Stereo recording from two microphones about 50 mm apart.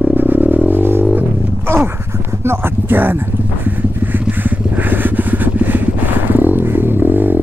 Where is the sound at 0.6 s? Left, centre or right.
Right.